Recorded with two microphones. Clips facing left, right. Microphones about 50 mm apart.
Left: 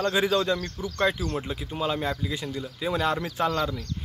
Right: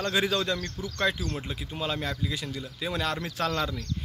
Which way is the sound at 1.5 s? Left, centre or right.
Left.